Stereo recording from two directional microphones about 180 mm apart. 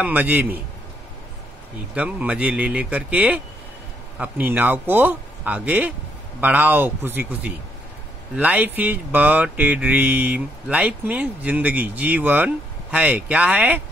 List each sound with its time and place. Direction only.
0.0 s speech: 10° right (ahead or behind)
2.0 s speech: 5° right (ahead or behind)